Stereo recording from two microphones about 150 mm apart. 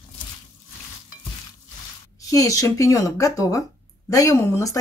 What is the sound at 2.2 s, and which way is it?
Speech, 20° left (ahead or behind).